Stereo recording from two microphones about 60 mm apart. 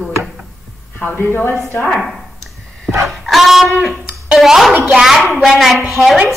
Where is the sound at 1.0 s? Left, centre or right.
Left.